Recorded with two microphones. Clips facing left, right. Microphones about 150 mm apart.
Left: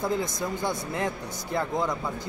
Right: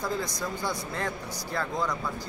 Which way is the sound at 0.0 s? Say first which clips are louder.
Left 3 dB; 20° left (ahead or behind).